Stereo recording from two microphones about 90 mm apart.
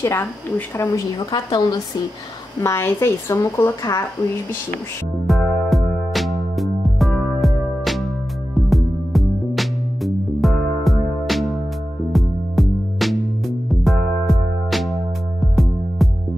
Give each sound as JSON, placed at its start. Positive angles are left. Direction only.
{"t": 0.0, "sound": "a woman's voice", "side_deg": 25}
{"t": 0.9, "sound": "a woman's voice", "side_deg": 50}
{"t": 2.6, "sound": "a woman's voice", "side_deg": 30}
{"t": 5.2, "sound": "music", "side_deg": 0}